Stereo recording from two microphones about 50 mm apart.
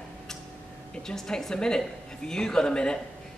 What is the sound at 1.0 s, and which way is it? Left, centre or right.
A woman's voice, centre.